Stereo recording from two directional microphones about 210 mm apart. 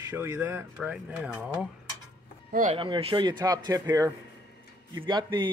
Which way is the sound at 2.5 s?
40° right (ahead or behind).